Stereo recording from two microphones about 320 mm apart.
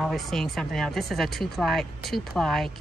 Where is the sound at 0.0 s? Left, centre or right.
Centre.